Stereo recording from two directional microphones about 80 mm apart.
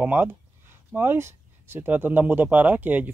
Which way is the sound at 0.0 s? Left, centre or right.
Right.